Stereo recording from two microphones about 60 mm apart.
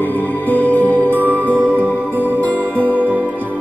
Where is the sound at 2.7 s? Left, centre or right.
Right.